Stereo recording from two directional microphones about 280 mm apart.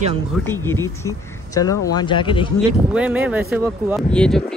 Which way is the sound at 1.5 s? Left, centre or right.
Centre.